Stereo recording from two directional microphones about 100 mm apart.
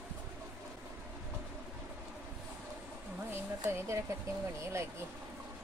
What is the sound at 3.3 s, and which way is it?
Speech, 25° right (ahead or behind).